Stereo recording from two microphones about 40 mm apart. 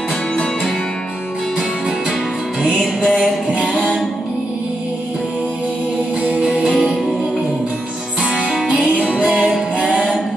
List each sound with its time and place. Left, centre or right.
2.8 s music: centre
3.2 s music: centre
8.2 s music: centre
8.5 s music: centre
8.7 s music: right
9.3 s music: centre